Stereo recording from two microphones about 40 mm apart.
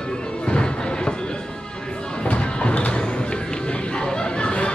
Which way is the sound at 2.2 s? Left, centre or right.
Left.